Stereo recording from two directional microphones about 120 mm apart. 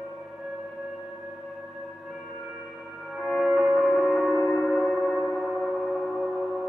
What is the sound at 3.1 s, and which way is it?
Music, centre (ahead or behind).